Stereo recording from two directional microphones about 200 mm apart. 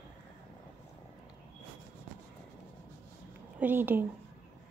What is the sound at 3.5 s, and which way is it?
Speech, 10° right (ahead or behind).